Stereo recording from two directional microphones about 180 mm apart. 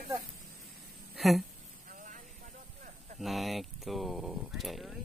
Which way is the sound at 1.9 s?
45° right (ahead or behind).